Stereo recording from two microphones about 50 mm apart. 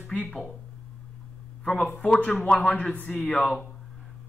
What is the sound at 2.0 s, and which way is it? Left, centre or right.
A man's voice, left.